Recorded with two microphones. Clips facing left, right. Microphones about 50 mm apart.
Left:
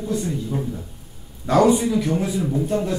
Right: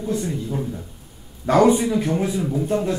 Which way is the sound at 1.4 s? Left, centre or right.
Right.